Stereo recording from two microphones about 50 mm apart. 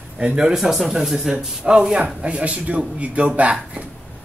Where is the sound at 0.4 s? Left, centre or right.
Centre; by 3.5 s right.